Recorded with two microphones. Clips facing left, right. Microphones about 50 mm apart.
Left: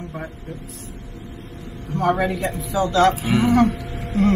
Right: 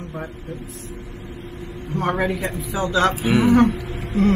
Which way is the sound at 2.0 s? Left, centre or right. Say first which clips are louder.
Left 2 dB; centre.